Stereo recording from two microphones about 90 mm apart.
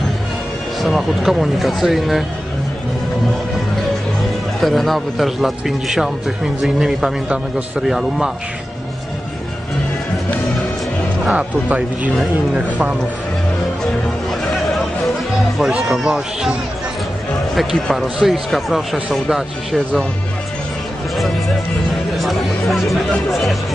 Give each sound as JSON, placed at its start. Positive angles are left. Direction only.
{"t": 0.8, "sound": "speech", "side_deg": 0}
{"t": 4.6, "sound": "speech", "side_deg": 0}
{"t": 11.3, "sound": "speech", "side_deg": -15}
{"t": 14.5, "sound": "music", "side_deg": 0}
{"t": 17.6, "sound": "speech", "side_deg": 0}
{"t": 22.2, "sound": "speech", "side_deg": 0}